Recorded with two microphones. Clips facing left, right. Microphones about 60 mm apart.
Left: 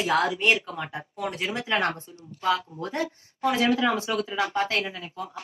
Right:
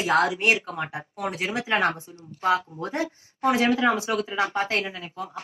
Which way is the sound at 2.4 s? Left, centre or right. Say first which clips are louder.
Right 2 dB; right.